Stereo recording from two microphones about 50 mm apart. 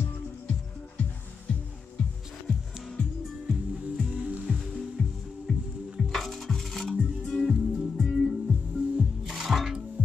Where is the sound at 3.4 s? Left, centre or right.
Centre.